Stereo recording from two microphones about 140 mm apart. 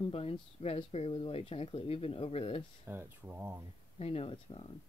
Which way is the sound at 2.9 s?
15° right (ahead or behind).